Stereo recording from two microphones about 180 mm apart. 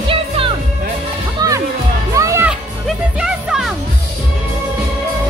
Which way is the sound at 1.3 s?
20° right (ahead or behind).